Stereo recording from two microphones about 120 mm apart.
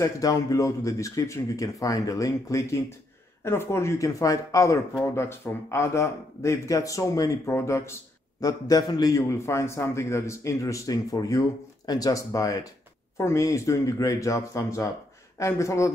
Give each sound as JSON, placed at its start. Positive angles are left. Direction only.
{"t": 0.0, "sound": "speech", "side_deg": 30}